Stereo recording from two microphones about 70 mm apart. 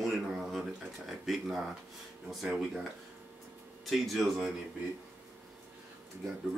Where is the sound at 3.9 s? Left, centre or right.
Centre.